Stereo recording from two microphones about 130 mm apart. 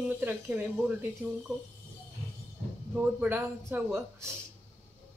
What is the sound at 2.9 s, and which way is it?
A woman's voice, 15° right (ahead or behind).